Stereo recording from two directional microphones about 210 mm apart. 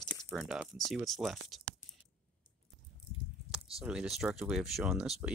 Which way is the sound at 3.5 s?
5° right (ahead or behind).